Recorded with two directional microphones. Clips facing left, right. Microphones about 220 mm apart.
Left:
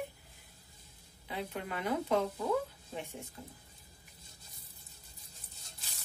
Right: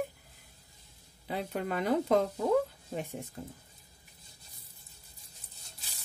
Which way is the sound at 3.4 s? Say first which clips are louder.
Right 6 dB; 40° right (ahead or behind).